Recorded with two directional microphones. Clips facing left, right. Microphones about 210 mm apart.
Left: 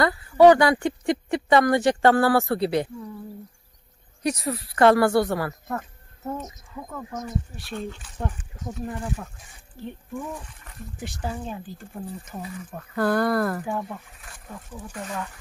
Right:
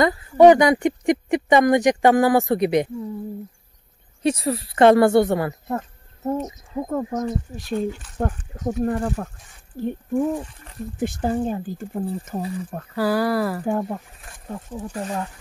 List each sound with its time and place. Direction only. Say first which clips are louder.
0.0 s speech: right 2 dB; 20° right (ahead or behind)
4.2 s speech: right 5 dB; 30° right (ahead or behind)
7.7 s speech: right 8 dB; centre (ahead or behind)
8.2 s speech: right 7 dB; 60° right (ahead or behind)
9.8 s speech: right 12 dB; 45° right (ahead or behind)
12.4 s speech: right 7 dB; 35° right (ahead or behind)
12.9 s speech: right 1 dB; 5° right (ahead or behind)
13.7 s speech: right 6 dB; 35° right (ahead or behind)